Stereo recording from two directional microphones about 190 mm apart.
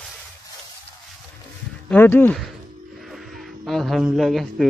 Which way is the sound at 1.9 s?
10° left (ahead or behind).